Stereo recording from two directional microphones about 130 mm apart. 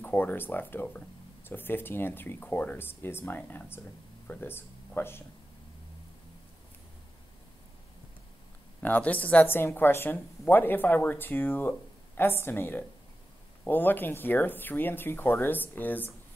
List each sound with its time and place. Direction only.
0.0 s speech: 15° left (ahead or behind)
8.8 s speech: 10° left (ahead or behind)